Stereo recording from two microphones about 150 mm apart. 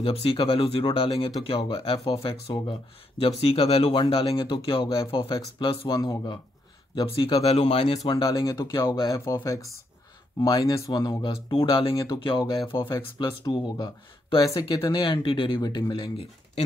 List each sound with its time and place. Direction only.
0.0 s speech: 40° left (ahead or behind)
7.5 s speech: 40° left (ahead or behind)
8.0 s speech: 25° left (ahead or behind)